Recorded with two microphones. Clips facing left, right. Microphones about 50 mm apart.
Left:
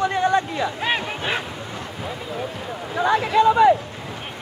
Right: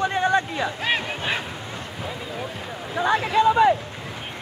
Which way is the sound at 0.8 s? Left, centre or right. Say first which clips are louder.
Left 1 dB; centre.